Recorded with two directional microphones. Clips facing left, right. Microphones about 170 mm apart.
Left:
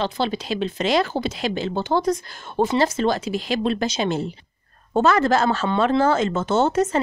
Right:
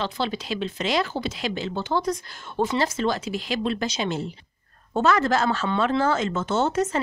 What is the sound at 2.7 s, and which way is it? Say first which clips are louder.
Speech: left 5 dB; 30° left (ahead or behind).